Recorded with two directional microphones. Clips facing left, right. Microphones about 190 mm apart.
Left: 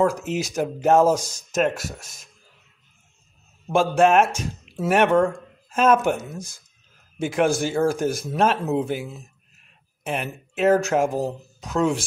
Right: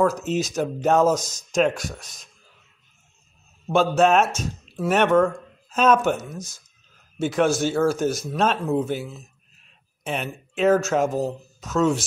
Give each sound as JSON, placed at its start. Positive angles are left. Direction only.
{"t": 0.0, "sound": "speech", "side_deg": 10}
{"t": 3.7, "sound": "speech", "side_deg": 10}